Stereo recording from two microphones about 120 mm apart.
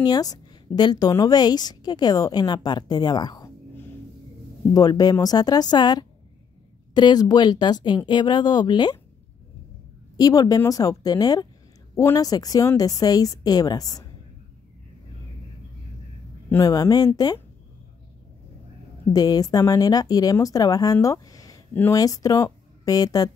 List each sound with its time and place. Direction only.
0.0 s a woman's voice: 35° left (ahead or behind)
4.7 s a woman's voice: 30° left (ahead or behind)
10.1 s a woman's voice: 30° left (ahead or behind)
16.6 s a woman's voice: 35° left (ahead or behind)
19.1 s a woman's voice: 30° left (ahead or behind)